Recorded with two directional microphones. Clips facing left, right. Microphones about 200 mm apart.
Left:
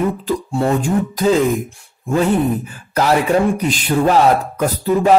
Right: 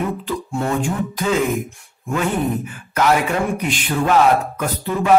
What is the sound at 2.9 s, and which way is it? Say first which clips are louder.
Speech: left 3 dB; 35° left (ahead or behind).